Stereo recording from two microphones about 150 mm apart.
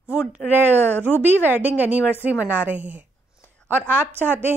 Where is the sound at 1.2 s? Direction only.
10° right (ahead or behind).